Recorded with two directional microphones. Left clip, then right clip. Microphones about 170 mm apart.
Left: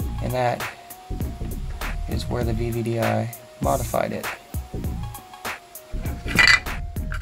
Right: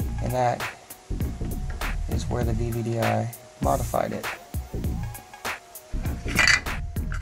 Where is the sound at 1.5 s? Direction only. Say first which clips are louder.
Right 1 dB; centre (ahead or behind).